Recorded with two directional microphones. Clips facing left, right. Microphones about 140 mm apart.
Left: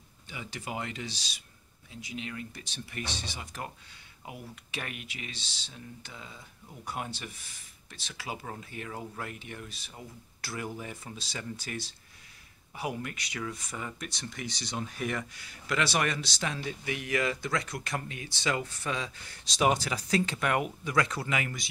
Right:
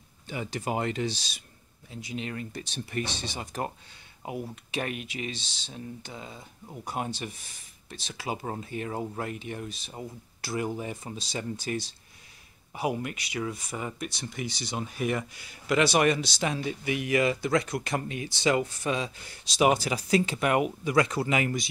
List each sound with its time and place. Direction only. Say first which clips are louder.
0.3 s speech: right 7 dB; 45° right (ahead or behind)
3.2 s speech: right 6 dB; 30° right (ahead or behind)
8.2 s speech: right 6 dB; 30° right (ahead or behind)
19.4 s speech: right 3 dB; 10° right (ahead or behind); by 21.5 s 25° right (ahead or behind)